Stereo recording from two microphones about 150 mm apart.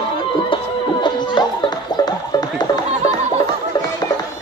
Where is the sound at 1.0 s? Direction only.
30° left (ahead or behind).